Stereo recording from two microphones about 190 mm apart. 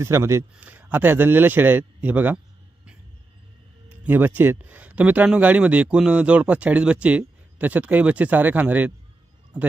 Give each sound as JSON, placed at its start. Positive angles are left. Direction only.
{"t": 0.0, "sound": "speech", "side_deg": -15}
{"t": 4.0, "sound": "speech", "side_deg": -10}